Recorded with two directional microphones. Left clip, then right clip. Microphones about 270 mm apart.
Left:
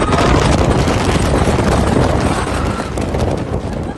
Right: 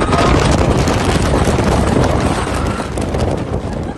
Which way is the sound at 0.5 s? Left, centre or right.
Centre.